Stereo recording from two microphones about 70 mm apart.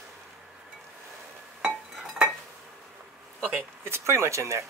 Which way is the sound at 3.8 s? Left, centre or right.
Right.